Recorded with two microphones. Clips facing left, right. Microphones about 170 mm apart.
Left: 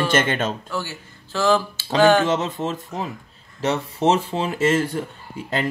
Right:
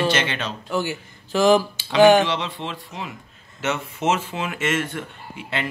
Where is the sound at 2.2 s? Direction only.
45° left (ahead or behind).